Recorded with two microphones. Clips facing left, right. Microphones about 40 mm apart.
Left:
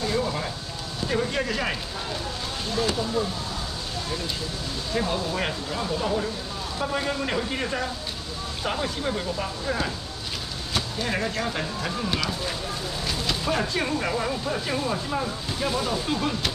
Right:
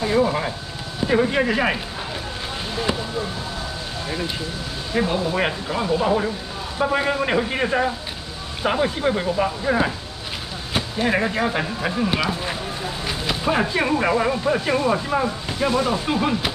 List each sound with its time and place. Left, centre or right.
0.0 s a sound: right
1.0 s speech: right
4.9 s speech: centre